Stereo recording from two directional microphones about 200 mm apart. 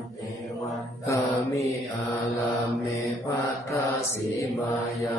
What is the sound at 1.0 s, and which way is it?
Mantra, 15° left (ahead or behind).